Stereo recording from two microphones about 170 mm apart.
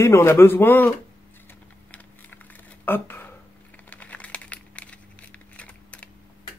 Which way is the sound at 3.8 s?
10° left (ahead or behind).